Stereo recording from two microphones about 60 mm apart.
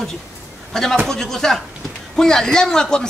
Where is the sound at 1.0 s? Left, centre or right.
Centre.